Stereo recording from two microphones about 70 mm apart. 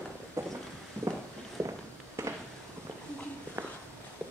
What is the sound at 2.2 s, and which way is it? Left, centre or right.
Fireworks, right.